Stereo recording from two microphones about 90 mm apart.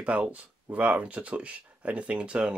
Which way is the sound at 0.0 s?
15° right (ahead or behind).